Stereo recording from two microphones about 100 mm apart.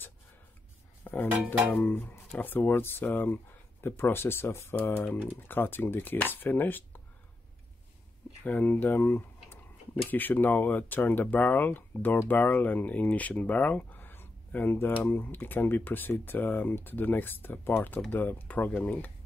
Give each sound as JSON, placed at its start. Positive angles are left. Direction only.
{"t": 1.0, "sound": "cutlery", "side_deg": 20}
{"t": 1.3, "sound": "a sound", "side_deg": -15}
{"t": 1.7, "sound": "speech", "side_deg": 20}
{"t": 8.5, "sound": "speech", "side_deg": 15}